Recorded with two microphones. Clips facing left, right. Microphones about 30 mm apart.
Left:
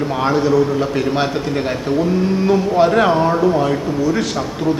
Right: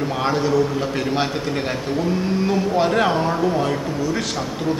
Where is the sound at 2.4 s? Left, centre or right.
Centre.